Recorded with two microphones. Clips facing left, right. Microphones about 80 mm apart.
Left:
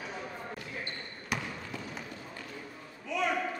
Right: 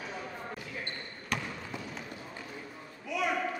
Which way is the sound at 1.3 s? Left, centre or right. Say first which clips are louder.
Even; centre.